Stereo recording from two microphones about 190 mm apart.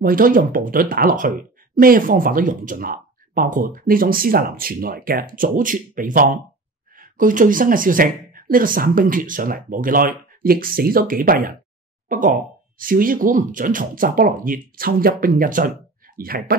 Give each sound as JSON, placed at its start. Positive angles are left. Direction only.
{"t": 0.0, "sound": "speech", "side_deg": -45}